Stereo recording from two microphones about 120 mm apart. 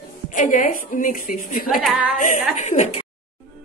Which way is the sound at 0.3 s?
90° left.